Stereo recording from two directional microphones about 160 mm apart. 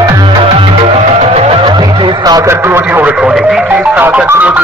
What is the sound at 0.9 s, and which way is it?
Music, 45° right (ahead or behind).